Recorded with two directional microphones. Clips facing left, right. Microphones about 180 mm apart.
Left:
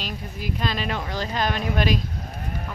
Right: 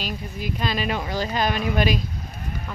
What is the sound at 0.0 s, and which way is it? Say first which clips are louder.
Speech: right 2 dB; 5° right (ahead or behind).